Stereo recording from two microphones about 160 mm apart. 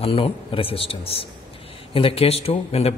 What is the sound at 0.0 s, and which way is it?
Speech, 35° left (ahead or behind).